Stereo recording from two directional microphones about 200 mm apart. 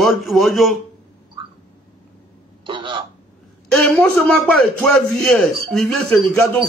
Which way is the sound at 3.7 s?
5° left (ahead or behind).